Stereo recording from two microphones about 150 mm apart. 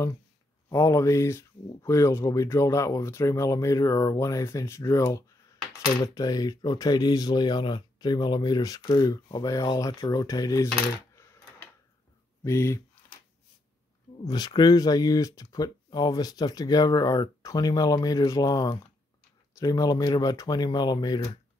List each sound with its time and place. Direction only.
0.7 s speech: 20° left (ahead or behind)
12.4 s speech: 20° left (ahead or behind)
14.2 s speech: 25° left (ahead or behind)